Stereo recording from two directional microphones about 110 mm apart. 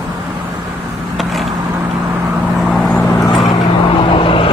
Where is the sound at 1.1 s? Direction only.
Centre (ahead or behind).